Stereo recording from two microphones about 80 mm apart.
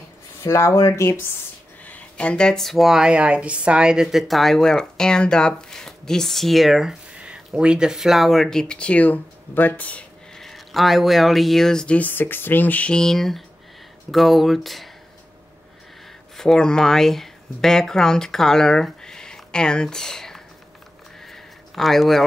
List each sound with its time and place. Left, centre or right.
0.4 s speech: left
1.9 s speech: centre
10.3 s speech: centre
12.1 s speech: left; by 14.9 s centre
16.3 s speech: centre
21.3 s a sound: centre